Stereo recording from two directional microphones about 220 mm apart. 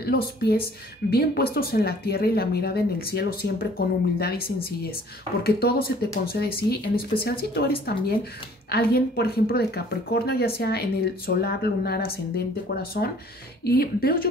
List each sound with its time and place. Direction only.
0.0 s speech: 45° left (ahead or behind)
5.4 s speech: 45° left (ahead or behind)